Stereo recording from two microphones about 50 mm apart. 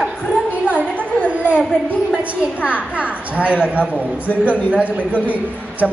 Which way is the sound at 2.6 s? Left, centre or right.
Right.